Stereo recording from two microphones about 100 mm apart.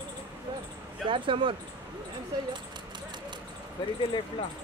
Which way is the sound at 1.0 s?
60° right (ahead or behind).